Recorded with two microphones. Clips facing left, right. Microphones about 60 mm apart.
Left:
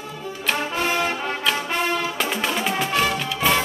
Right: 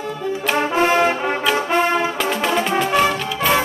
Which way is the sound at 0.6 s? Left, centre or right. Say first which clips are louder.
Right 9 dB; right.